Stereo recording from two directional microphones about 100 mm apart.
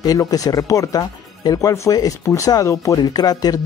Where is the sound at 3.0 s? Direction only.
40° left (ahead or behind).